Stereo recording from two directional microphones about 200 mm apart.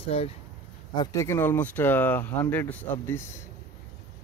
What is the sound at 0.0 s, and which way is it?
Speech, 30° left (ahead or behind).